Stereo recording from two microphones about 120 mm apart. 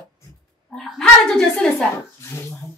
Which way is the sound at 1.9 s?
25° left (ahead or behind).